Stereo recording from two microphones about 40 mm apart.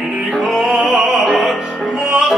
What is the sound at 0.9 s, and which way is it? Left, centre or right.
Opera, centre.